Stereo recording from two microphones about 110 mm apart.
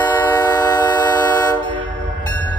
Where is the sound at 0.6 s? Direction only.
40° left (ahead or behind).